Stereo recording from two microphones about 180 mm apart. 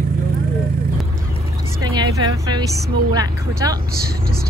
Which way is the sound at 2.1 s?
20° right (ahead or behind).